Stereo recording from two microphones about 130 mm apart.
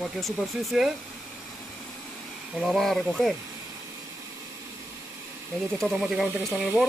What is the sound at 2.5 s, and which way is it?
Speech, centre (ahead or behind).